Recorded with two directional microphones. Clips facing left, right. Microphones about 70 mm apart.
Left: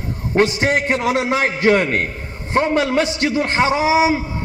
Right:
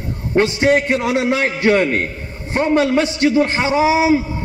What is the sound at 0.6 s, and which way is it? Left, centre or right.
A man's voice, left.